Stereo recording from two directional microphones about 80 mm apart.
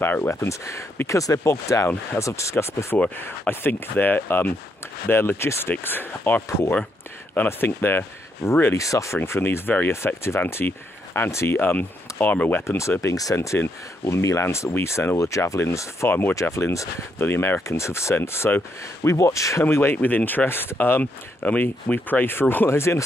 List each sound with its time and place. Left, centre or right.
0.0 s speech: left
7.4 s speech: left
8.7 s speech: left
11.7 s speech: left
12.6 s speech: left
13.0 s speech: left
16.1 s speech: left
16.3 s speech: left
17.3 s speech: left
17.6 s speech: left
19.6 s speech: left